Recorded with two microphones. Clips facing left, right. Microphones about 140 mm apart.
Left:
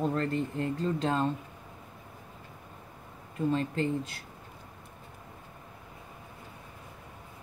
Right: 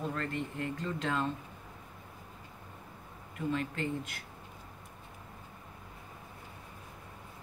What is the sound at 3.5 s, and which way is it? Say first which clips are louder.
Speech: left 5 dB; 30° left (ahead or behind).